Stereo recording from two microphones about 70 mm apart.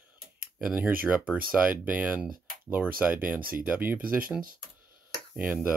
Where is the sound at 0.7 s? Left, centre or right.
Right.